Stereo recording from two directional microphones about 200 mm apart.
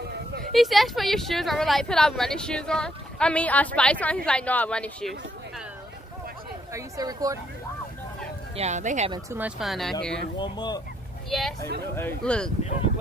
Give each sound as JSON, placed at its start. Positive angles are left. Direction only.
{"t": 0.5, "sound": "speech", "side_deg": 0}
{"t": 6.7, "sound": "speech", "side_deg": -20}
{"t": 8.5, "sound": "speech", "side_deg": -35}
{"t": 9.1, "sound": "speech", "side_deg": -15}
{"t": 9.6, "sound": "speech", "side_deg": 0}
{"t": 10.4, "sound": "speech", "side_deg": 20}
{"t": 11.2, "sound": "speech", "side_deg": 0}